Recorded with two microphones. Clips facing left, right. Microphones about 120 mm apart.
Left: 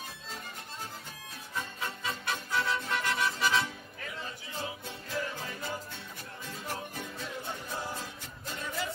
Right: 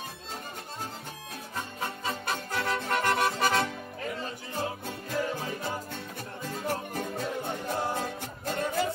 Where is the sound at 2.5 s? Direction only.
50° right (ahead or behind).